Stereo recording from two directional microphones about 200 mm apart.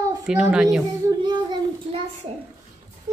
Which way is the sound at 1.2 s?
20° right (ahead or behind).